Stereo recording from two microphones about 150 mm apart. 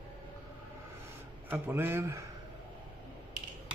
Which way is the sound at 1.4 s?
15° right (ahead or behind).